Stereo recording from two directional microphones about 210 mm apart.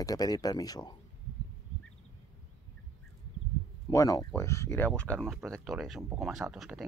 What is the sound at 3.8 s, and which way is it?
Speech, 15° left (ahead or behind).